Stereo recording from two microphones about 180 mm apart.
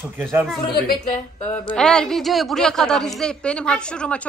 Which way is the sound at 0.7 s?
55° left (ahead or behind).